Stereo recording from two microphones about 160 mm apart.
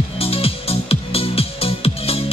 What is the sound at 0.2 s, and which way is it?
Music, 35° left (ahead or behind).